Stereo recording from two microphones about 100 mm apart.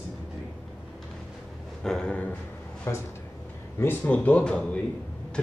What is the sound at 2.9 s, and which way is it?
Speech, 30° left (ahead or behind).